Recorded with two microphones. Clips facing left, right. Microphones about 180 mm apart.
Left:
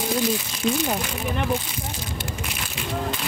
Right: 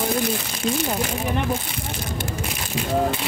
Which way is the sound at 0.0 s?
55° right (ahead or behind).